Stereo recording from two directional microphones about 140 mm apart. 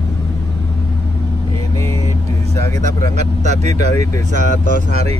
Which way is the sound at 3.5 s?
55° right (ahead or behind).